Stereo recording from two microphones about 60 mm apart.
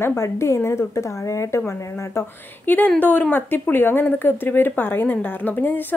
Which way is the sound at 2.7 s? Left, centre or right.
Left.